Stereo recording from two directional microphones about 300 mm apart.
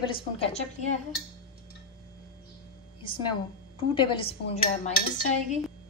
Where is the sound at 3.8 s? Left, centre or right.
Centre.